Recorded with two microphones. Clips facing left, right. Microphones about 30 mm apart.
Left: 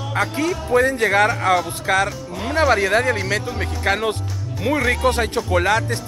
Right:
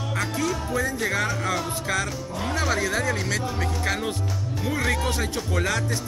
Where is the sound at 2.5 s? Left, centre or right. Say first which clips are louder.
Left 9 dB; left.